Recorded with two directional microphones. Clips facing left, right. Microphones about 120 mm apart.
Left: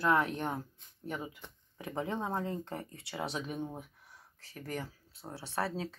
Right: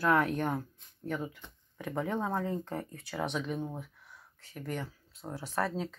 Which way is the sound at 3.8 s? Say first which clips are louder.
Right 2 dB; 40° left (ahead or behind).